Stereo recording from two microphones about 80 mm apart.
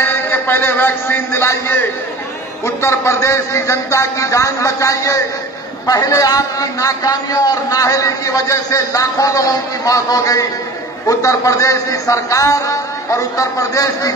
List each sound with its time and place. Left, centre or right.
0.0 s a man's voice: left